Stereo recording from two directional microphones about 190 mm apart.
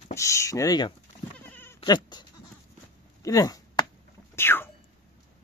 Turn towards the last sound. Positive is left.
turn(degrees=10)  # may be behind; listen again after turning